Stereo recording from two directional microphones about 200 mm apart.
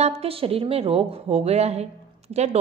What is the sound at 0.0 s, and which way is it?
A woman's voice, 30° right (ahead or behind).